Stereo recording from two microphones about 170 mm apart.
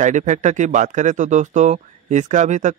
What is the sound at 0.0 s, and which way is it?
Speech, 45° right (ahead or behind).